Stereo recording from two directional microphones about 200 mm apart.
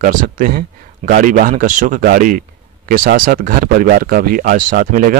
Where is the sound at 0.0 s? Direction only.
40° right (ahead or behind).